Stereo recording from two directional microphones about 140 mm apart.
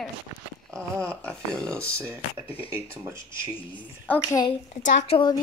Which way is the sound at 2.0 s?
20° right (ahead or behind).